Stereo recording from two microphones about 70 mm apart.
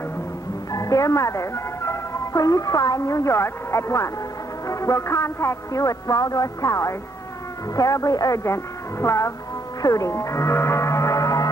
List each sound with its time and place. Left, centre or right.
0.7 s a sound: left
2.3 s speech: left
3.0 s a man's voice: left
9.0 s a man's voice: left
9.8 s music: left